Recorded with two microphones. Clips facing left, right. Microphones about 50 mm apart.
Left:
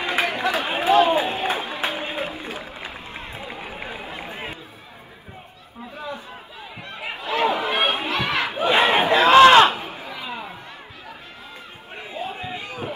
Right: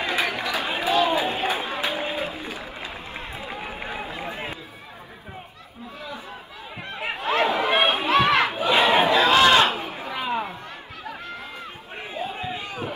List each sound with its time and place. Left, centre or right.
0.0 s run: left
0.7 s a sound: left
2.9 s run: centre
3.4 s run: right
7.0 s chatter: right
8.1 s battle cry: right
8.5 s crowd: left
9.9 s chop: right
12.0 s a sound: right